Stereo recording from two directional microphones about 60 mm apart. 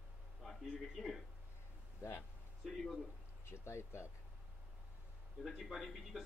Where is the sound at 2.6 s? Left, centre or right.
Centre.